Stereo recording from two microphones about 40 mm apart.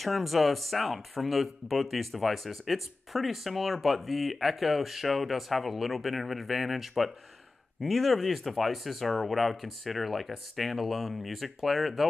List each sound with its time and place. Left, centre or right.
0.0 s speech: centre